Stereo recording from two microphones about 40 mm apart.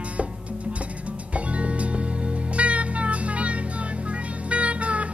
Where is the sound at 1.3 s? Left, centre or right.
Right.